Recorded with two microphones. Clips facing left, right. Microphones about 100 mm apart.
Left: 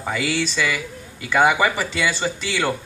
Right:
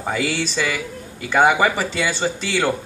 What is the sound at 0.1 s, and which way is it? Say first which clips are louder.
A woman's voice: even; 40° right (ahead or behind).